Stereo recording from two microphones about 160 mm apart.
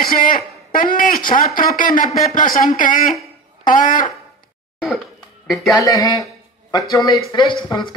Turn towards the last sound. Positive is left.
turn(degrees=30)  # may be behind; listen again after turning